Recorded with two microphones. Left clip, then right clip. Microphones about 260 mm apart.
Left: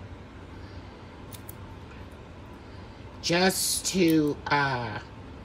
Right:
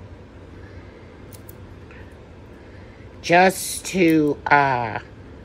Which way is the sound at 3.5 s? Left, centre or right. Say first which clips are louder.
Even; left.